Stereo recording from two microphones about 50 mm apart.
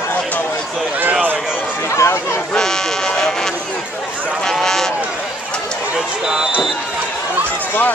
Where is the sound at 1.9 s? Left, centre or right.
Left.